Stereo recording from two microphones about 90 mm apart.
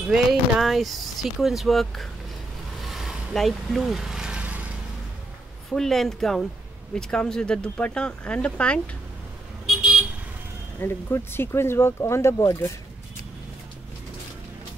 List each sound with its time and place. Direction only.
0.1 s speech: 5° right (ahead or behind)
2.8 s vehicle: 5° right (ahead or behind)
5.7 s speech: 5° left (ahead or behind)
9.8 s vehicle: 10° right (ahead or behind)
10.8 s speech: 25° left (ahead or behind)